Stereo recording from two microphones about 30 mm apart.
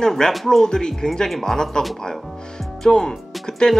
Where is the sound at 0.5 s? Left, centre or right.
Centre.